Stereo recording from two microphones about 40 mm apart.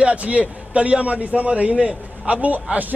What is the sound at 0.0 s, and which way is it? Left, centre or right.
A man's voice, right.